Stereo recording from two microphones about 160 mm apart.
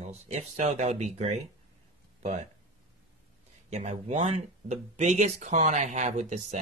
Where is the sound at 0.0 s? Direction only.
45° right (ahead or behind).